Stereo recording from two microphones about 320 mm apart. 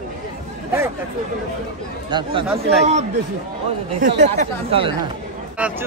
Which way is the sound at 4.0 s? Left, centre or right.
Right.